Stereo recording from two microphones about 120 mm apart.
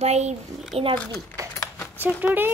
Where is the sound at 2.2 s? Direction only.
15° right (ahead or behind).